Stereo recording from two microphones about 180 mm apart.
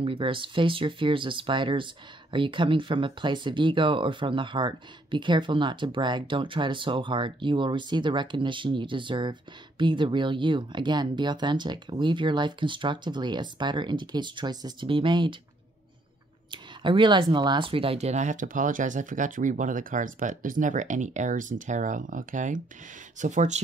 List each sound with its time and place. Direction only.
0.0 s speech: 30° right (ahead or behind)
16.4 s speech: 25° right (ahead or behind); by 23.6 s 40° right (ahead or behind)